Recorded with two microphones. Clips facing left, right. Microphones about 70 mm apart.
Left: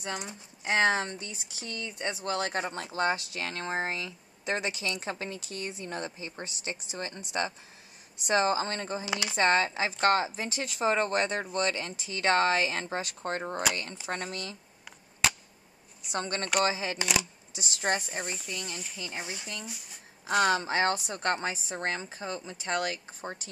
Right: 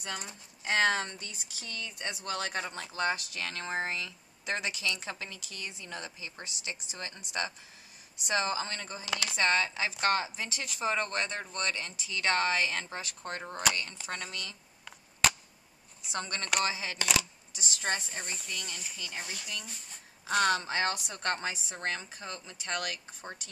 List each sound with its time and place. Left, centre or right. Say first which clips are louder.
0.0 s a woman's voice: left 4 dB; left
16.1 s a woman's voice: left 3 dB; left
17.0 s speech: right 1 dB; centre
17.7 s speech: left 4 dB; left
18.2 s speech: left 3 dB; centre
19.1 s speech: left 3 dB; left
19.6 s speech: left 4 dB; centre
20.7 s speech: left 4 dB; left